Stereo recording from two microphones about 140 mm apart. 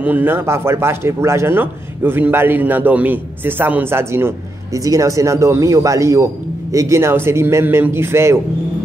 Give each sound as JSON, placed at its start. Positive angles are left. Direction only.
{"t": 0.0, "sound": "a man's voice", "side_deg": -15}